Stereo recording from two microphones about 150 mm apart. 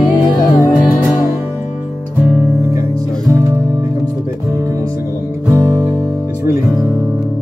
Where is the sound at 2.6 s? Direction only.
20° right (ahead or behind).